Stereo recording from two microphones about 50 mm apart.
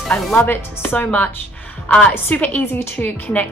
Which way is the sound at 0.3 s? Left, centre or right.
Left.